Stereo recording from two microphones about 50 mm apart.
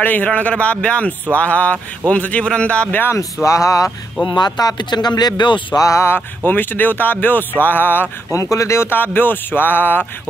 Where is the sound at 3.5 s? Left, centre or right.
Left.